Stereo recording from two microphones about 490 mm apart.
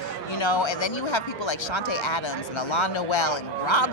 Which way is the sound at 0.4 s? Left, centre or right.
Left.